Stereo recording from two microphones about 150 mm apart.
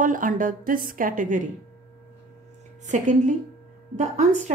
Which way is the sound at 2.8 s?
55° right (ahead or behind).